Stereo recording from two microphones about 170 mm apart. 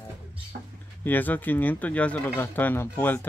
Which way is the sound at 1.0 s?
10° left (ahead or behind).